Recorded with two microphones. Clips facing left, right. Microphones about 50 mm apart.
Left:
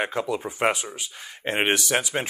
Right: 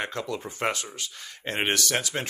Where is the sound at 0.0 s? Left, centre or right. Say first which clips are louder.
Left 5 dB; centre.